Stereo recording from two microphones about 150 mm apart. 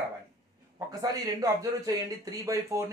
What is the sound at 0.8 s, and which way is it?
Speech, 25° right (ahead or behind).